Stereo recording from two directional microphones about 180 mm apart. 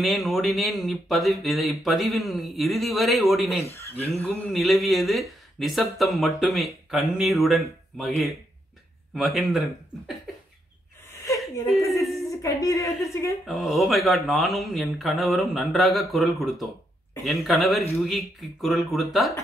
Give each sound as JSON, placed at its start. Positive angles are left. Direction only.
{"t": 0.0, "sound": "speech", "side_deg": 0}
{"t": 3.6, "sound": "speech", "side_deg": 15}
{"t": 4.5, "sound": "speech", "side_deg": 0}
{"t": 9.1, "sound": "speech", "side_deg": 0}
{"t": 11.2, "sound": "a sound", "side_deg": 15}
{"t": 11.6, "sound": "speech", "side_deg": 0}
{"t": 12.3, "sound": "a woman's voice", "side_deg": 15}
{"t": 13.5, "sound": "speech", "side_deg": 0}